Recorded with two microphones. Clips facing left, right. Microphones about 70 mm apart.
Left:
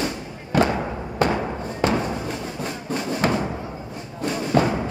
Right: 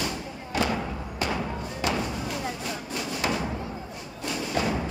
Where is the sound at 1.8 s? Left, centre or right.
Left.